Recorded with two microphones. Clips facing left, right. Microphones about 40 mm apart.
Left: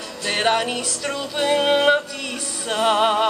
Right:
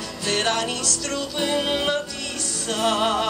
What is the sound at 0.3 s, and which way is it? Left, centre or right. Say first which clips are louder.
Music: left 3 dB; centre.